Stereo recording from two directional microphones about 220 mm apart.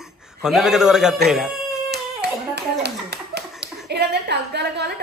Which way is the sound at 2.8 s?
50° right (ahead or behind).